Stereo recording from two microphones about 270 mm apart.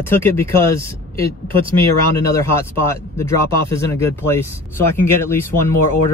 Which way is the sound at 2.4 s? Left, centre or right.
Centre.